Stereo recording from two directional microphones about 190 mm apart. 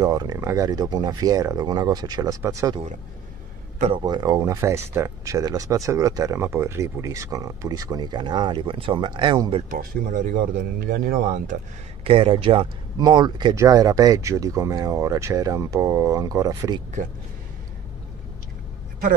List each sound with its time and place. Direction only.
0.0 s speech: 20° right (ahead or behind)
4.0 s speech: 20° right (ahead or behind)
9.7 s speech: 45° right (ahead or behind)
12.0 s speech: 30° right (ahead or behind)